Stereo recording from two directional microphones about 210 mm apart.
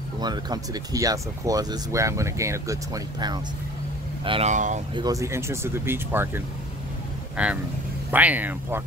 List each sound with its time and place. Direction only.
0.2 s speech: 20° right (ahead or behind); by 4.8 s 35° right (ahead or behind)
4.9 s speech: 15° right (ahead or behind)